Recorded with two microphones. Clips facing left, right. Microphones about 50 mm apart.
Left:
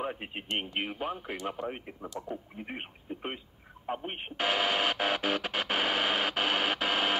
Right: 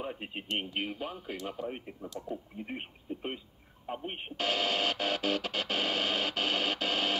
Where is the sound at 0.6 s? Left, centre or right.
Left.